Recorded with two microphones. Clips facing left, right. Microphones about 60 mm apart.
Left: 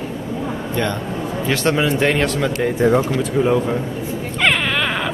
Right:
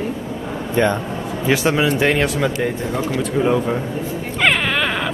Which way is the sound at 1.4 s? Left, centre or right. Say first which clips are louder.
Right 2 dB; centre.